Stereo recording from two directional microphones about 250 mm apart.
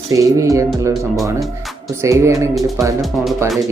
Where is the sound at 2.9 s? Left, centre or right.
Centre.